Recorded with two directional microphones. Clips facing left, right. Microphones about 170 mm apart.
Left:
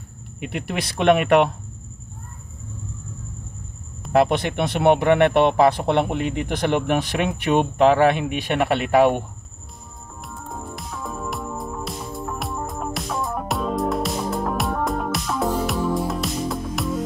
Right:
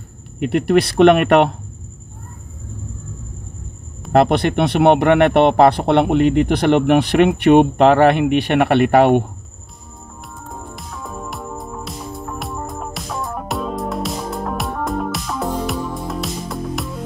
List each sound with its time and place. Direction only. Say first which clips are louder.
0.4 s speech: right 12 dB; 70° right (ahead or behind)
4.1 s speech: right 4 dB; 70° right (ahead or behind)
10.5 s music: even; centre (ahead or behind)